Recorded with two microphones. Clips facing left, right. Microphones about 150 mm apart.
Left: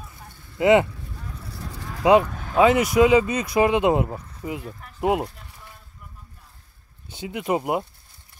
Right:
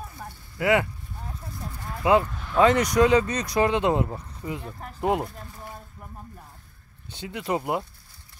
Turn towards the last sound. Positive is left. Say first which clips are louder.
# left 3 dB
turn(degrees=15)  # may be behind; listen again after turning